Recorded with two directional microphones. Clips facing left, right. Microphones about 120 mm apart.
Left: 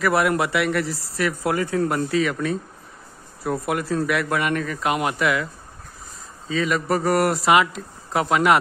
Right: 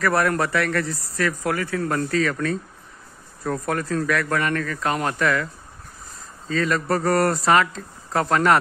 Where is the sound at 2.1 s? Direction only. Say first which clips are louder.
Left 1 dB; 10° left (ahead or behind).